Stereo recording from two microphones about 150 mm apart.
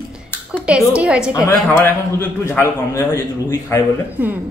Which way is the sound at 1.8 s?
15° left (ahead or behind).